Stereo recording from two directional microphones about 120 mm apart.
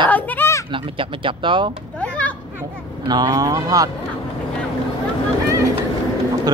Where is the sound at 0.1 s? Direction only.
15° left (ahead or behind).